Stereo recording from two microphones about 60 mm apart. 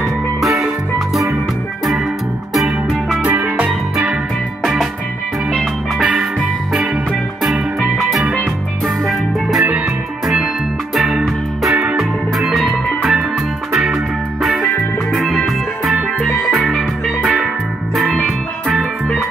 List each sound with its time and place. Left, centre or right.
0.4 s music: centre
2.5 s music: centre
8.0 s music: centre
11.0 s music: centre
11.7 s music: right
12.0 s music: centre
14.4 s music: centre